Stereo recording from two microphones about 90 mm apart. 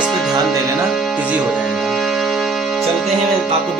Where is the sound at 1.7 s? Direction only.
Centre (ahead or behind).